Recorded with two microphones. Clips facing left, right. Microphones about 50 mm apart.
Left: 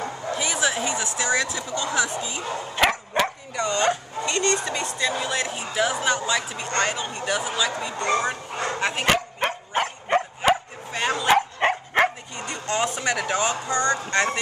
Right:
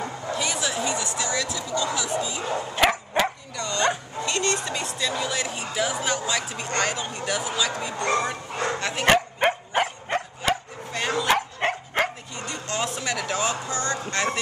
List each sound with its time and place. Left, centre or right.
0.4 s a sound: centre
0.7 s speech: left
2.7 s dog: centre
3.5 s speech: centre
4.2 s a sound: centre
5.0 s speech: centre
9.0 s bow-wow: centre
10.0 s dog: centre
10.9 s bow-wow: centre
12.4 s a sound: centre
13.7 s speech: left
14.1 s speech: centre